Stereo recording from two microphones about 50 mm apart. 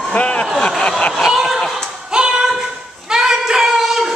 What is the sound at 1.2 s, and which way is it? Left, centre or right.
Chicken, centre.